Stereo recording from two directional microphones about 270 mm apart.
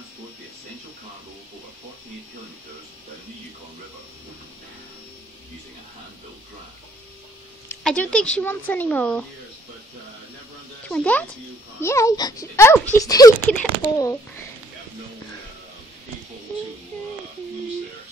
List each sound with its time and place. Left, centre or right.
7.6 s speech: centre
10.9 s a child's voice: centre